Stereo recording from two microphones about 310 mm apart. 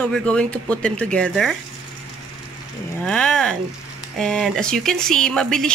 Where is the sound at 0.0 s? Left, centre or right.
Centre.